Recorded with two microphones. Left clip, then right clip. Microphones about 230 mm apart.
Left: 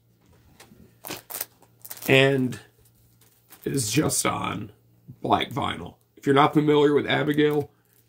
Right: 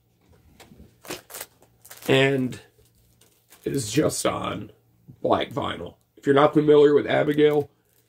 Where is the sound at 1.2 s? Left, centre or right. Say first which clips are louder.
Left 1 dB; centre.